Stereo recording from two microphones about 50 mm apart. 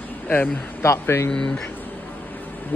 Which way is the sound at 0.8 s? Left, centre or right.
Left.